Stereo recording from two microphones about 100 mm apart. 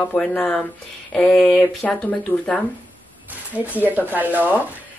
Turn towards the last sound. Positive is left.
turn(degrees=-15)  # may be behind; listen again after turning